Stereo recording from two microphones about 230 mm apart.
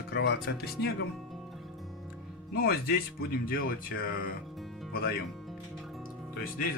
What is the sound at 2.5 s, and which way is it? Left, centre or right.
Speech, left.